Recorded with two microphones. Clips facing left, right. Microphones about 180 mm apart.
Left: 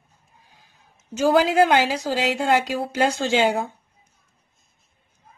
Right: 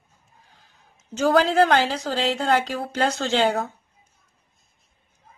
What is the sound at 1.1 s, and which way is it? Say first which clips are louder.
A woman's voice: left 1 dB; 10° left (ahead or behind).